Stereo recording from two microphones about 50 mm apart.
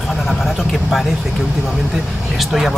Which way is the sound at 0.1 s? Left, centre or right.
Centre.